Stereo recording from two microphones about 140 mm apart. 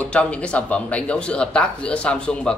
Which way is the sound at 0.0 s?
10° left (ahead or behind).